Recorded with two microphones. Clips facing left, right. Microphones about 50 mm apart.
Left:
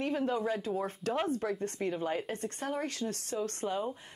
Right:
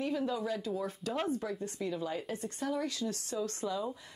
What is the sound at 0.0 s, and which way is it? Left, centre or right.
Speech, left.